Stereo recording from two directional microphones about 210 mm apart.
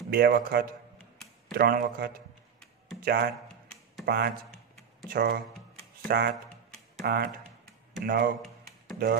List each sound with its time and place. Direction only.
0.1 s speech: 45° right (ahead or behind)